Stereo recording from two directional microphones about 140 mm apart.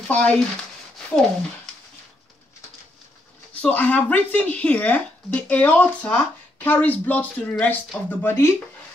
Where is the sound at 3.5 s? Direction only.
10° left (ahead or behind).